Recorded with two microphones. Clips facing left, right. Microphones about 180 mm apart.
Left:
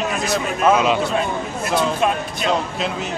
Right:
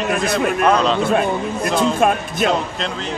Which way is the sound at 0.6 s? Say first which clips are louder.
Left 1 dB; 5° left (ahead or behind).